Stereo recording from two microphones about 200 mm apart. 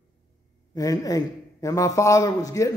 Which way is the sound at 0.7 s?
15° left (ahead or behind).